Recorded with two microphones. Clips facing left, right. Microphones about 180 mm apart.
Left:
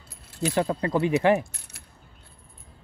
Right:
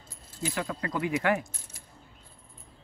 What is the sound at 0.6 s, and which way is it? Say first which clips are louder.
Speech: left 8 dB; 30° left (ahead or behind).